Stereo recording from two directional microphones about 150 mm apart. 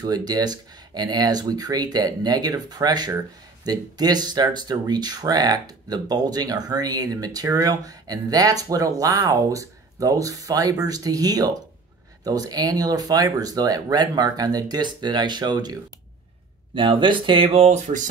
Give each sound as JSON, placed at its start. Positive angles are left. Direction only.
{"t": 0.0, "sound": "speech", "side_deg": -25}
{"t": 16.7, "sound": "speech", "side_deg": -35}